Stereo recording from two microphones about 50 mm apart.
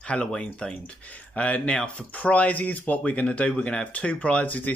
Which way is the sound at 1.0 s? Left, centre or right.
Left.